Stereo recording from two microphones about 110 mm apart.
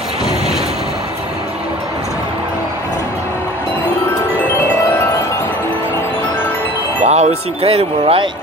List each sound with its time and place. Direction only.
4.6 s music: 25° left (ahead or behind)
7.1 s speech: 85° right; by 8.3 s 60° right (ahead or behind)